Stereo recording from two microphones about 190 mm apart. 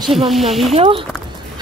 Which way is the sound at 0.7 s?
30° right (ahead or behind).